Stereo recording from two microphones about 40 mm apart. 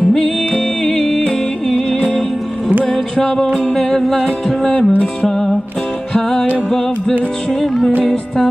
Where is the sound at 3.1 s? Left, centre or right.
Centre.